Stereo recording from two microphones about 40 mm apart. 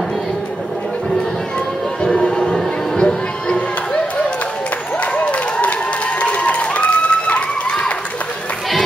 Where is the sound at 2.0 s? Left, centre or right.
Left.